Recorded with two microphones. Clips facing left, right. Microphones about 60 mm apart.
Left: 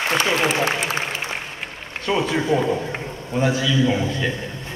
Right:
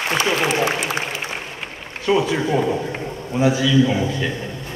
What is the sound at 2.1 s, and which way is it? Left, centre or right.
Speech, centre.